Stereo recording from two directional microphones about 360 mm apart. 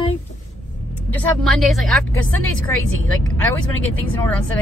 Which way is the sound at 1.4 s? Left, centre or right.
Centre.